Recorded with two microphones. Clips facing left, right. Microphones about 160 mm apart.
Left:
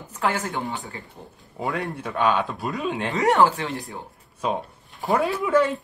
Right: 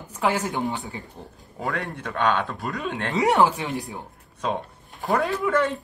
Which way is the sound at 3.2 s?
15° right (ahead or behind).